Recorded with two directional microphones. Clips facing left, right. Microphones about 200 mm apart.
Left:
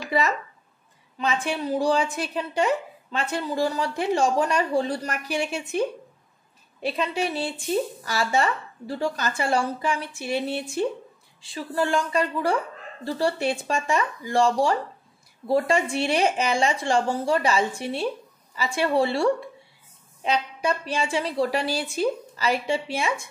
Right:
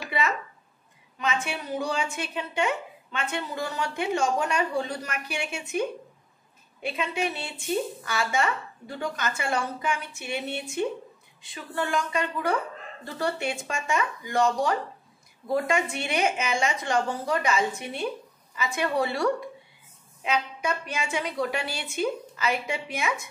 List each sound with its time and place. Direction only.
1.1 s a woman's voice: 35° left (ahead or behind)